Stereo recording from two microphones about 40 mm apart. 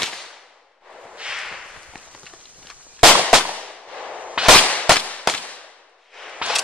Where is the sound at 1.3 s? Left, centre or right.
Centre.